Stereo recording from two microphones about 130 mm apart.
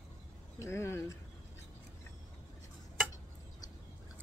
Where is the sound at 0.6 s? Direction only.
20° left (ahead or behind).